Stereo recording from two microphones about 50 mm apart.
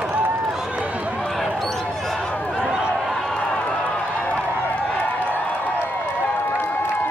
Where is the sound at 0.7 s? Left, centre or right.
Right.